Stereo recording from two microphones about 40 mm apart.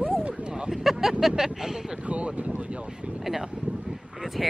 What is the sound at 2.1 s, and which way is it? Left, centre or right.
Speech, right.